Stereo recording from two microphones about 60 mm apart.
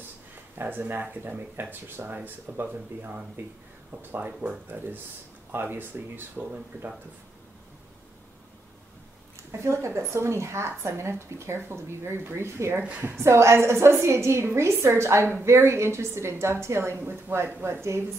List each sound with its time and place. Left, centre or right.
0.6 s speech: right
9.5 s speech: right